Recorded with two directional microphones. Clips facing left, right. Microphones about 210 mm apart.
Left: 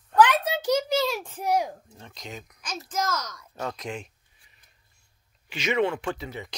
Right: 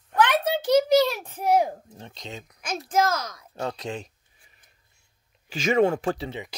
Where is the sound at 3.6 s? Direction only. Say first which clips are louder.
Right 2 dB; 30° right (ahead or behind).